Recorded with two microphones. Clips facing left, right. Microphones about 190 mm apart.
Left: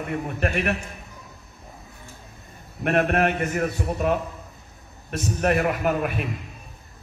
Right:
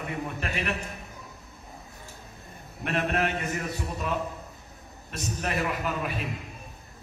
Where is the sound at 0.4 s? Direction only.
55° left (ahead or behind).